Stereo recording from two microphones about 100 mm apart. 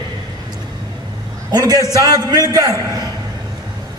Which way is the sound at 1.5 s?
40° right (ahead or behind).